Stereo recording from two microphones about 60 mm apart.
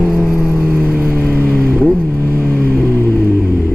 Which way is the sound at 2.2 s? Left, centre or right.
Left.